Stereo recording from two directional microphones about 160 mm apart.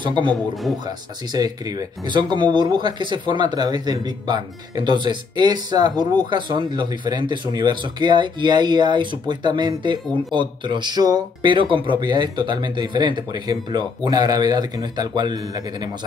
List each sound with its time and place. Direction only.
0.3 s a man's voice: centre (ahead or behind)
0.8 s speech: 25° right (ahead or behind)